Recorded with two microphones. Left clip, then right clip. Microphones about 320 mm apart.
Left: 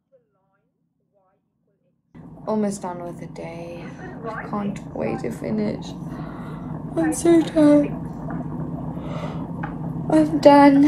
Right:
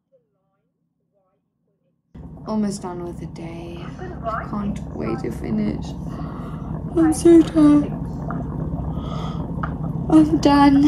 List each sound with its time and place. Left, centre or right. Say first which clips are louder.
2.4 s a woman's voice: left 2 dB; centre
7.0 s a woman's voice: right 4 dB; centre
9.0 s snort: right 1 dB; right
10.1 s a woman's voice: left 2 dB; centre